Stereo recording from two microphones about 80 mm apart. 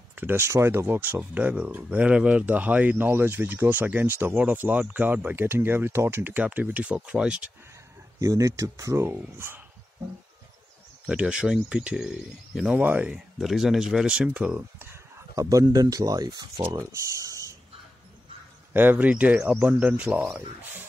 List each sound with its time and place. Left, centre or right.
0.1 s speech: right
0.9 s speech: right
8.2 s speech: right
11.1 s speech: centre
12.7 s speech: right
13.1 s speech: centre
15.3 s speech: right
16.7 s speech: right
18.7 s speech: right